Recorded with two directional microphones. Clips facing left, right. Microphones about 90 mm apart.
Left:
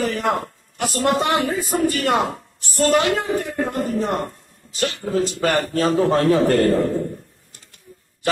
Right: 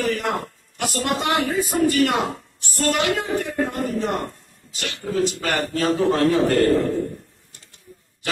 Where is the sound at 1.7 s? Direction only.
40° left (ahead or behind).